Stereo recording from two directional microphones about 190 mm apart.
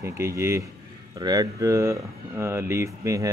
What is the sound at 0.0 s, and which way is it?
Speech, 15° right (ahead or behind).